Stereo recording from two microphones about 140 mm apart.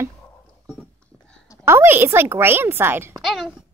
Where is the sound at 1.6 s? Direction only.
15° right (ahead or behind).